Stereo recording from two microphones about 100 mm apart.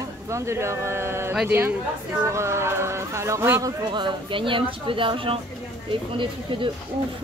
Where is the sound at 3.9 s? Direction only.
55° right (ahead or behind).